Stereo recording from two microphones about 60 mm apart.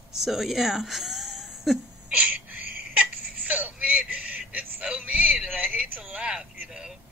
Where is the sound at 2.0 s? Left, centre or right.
Right.